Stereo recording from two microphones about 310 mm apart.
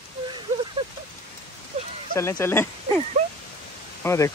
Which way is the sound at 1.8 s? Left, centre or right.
Right.